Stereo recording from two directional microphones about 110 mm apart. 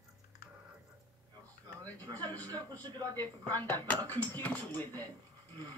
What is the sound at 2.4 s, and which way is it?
Speech, 35° right (ahead or behind).